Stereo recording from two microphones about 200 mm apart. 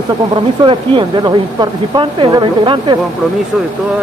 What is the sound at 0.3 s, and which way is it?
Speech, 25° right (ahead or behind).